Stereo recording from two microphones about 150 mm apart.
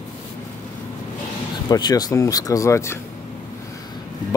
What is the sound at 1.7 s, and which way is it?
Speech, 25° left (ahead or behind).